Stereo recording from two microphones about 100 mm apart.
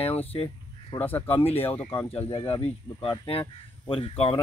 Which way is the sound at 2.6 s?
70° left (ahead or behind).